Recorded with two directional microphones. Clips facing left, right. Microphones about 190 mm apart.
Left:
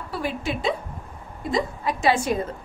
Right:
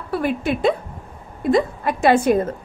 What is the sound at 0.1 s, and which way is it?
A woman's voice, 55° right (ahead or behind).